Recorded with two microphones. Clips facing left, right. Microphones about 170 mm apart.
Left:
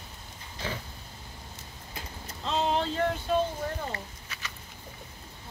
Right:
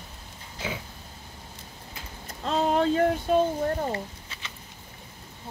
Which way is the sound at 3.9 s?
25° right (ahead or behind).